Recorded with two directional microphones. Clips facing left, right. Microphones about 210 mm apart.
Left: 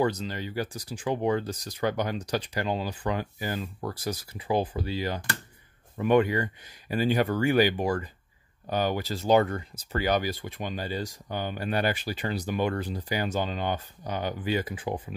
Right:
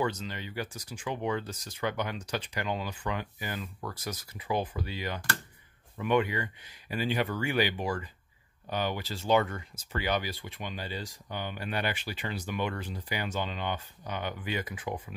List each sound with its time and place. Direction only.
0.0 s speech: 40° left (ahead or behind)